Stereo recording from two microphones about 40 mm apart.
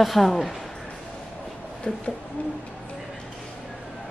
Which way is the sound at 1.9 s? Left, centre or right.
Left.